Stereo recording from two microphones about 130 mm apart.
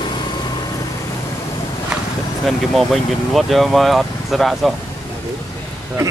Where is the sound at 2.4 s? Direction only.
Centre (ahead or behind).